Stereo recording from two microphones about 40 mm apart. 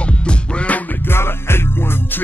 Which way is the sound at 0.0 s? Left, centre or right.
Left.